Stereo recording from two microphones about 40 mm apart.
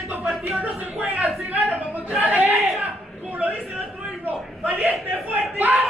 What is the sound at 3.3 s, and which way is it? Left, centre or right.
Speech, right.